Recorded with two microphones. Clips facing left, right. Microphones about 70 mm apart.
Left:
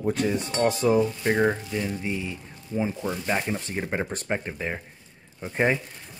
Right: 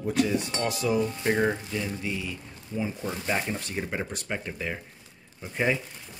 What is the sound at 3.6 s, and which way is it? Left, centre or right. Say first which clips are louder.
Speech: left 3 dB; left.